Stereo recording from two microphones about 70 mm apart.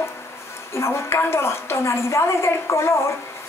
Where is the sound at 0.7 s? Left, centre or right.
Left.